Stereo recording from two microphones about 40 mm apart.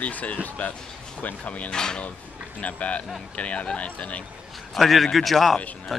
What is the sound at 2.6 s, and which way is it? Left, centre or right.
Speech, left.